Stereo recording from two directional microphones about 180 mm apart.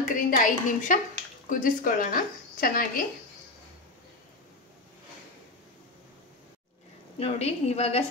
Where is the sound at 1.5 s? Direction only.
50° left (ahead or behind).